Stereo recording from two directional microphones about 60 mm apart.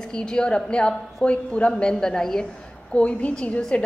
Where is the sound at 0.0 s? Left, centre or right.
Centre.